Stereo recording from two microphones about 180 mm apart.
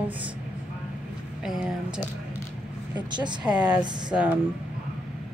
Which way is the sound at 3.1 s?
25° right (ahead or behind).